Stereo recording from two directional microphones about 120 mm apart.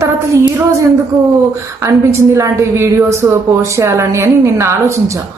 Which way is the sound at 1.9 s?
25° right (ahead or behind).